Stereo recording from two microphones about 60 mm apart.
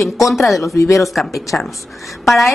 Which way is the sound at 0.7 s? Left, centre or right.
Left.